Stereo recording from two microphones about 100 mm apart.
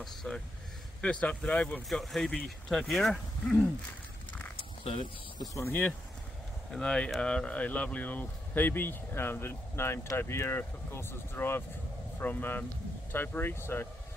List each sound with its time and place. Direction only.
0.0 s speech: centre (ahead or behind)
1.0 s speech: 15° left (ahead or behind)
1.9 s speech: 5° left (ahead or behind)
4.6 s a sound: 75° left (ahead or behind)
5.5 s speech: 25° left (ahead or behind)
6.7 s speech: 10° left (ahead or behind)